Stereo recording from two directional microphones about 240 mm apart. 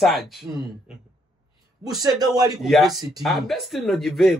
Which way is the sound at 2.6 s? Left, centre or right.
Centre.